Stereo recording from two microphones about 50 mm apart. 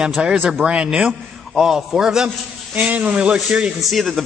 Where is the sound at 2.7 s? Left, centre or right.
Right.